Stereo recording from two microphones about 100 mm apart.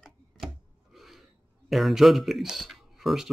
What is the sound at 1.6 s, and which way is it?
Speech, centre (ahead or behind).